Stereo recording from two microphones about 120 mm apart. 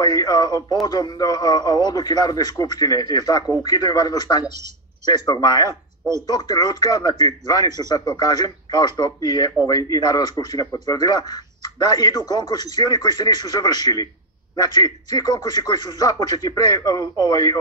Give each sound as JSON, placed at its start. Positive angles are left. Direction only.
{"t": 0.0, "sound": "speech", "side_deg": 35}